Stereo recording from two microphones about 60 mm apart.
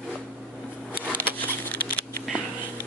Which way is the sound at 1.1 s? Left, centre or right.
Left.